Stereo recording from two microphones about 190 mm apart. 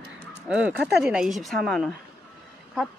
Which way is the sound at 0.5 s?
5° right (ahead or behind).